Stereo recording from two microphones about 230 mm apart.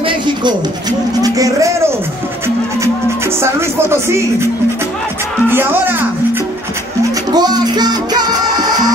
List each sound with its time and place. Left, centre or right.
1.2 s speech: centre
5.5 s speech: centre
7.3 s music: centre